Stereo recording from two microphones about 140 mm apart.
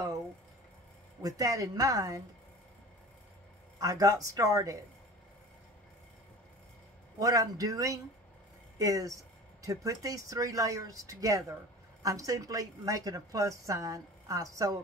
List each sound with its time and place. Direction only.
1.2 s a woman's voice: 25° right (ahead or behind)
3.8 s a woman's voice: 25° right (ahead or behind)
7.2 s a woman's voice: 25° right (ahead or behind)